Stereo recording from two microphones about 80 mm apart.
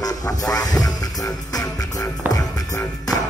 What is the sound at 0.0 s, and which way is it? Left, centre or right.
Music, left.